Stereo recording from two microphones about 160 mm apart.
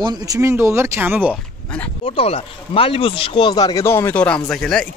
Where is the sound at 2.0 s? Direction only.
35° left (ahead or behind).